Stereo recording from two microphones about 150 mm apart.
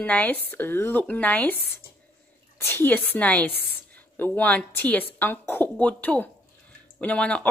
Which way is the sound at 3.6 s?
90° right.